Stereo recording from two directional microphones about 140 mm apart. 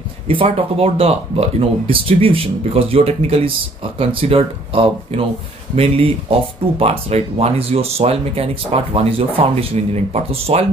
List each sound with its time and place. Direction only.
0.3 s speech: 40° right (ahead or behind)